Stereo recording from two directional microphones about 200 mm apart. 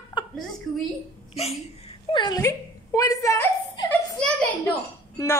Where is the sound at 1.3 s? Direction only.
30° left (ahead or behind).